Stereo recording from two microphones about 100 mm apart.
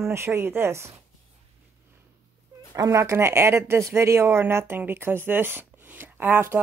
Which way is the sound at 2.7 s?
35° right (ahead or behind).